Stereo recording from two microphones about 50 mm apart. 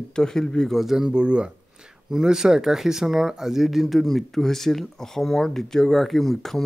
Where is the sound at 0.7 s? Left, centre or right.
Centre.